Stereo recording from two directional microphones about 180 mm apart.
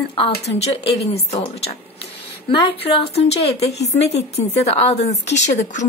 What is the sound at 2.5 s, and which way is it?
A woman's voice, 30° left (ahead or behind).